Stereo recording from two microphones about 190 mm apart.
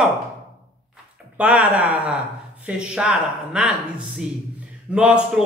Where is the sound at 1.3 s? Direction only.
5° right (ahead or behind).